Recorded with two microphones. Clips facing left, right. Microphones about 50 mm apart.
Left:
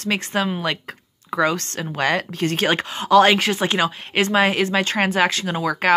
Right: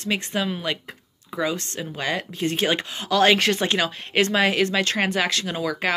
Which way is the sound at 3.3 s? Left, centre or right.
Centre.